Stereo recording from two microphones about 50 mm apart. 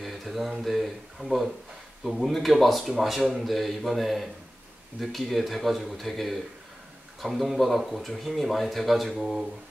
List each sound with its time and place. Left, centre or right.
0.0 s speech: centre